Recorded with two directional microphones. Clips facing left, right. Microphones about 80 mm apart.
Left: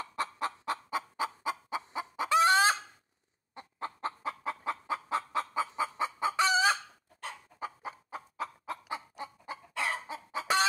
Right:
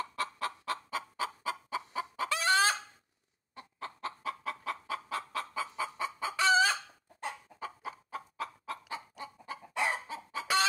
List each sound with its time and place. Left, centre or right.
0.1 s chicken: left